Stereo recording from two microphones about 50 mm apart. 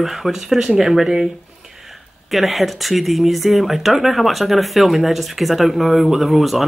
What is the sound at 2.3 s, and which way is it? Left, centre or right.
Speech, centre.